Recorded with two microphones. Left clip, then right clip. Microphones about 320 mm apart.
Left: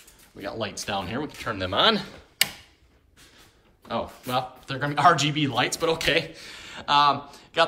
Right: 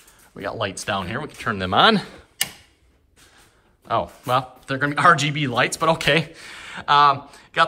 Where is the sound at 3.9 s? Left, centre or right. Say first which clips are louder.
Right 6 dB; centre.